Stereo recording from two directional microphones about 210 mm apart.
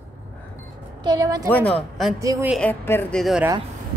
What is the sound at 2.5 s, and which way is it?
Speech, 5° left (ahead or behind).